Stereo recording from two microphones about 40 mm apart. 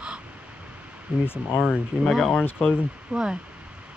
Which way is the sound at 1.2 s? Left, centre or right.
Left.